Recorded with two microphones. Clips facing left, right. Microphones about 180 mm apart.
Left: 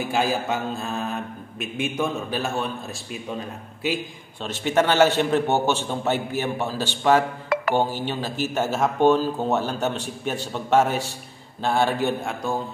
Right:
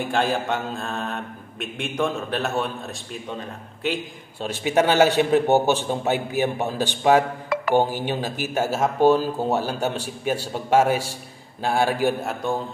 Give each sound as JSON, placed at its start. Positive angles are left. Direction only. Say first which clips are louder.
{"t": 0.0, "sound": "speech", "louder": "right 1 dB", "side_deg": 5}
{"t": 4.4, "sound": "a man's voice", "louder": "right 1 dB", "side_deg": -10}